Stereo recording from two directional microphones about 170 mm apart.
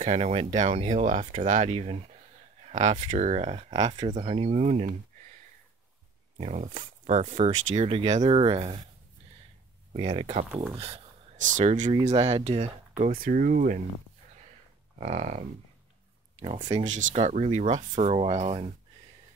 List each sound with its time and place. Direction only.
0.0 s speech: 40° right (ahead or behind)
6.3 s speech: 45° right (ahead or behind)
9.9 s speech: 35° right (ahead or behind)
11.4 s speech: 50° right (ahead or behind)
15.0 s speech: 40° right (ahead or behind)
16.3 s speech: 30° right (ahead or behind)
16.8 s speech: 45° right (ahead or behind)